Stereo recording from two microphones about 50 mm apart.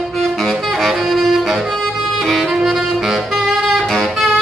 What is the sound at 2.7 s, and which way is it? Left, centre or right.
Saxophone, centre.